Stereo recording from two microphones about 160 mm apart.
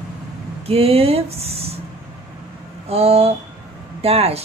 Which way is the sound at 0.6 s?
40° right (ahead or behind).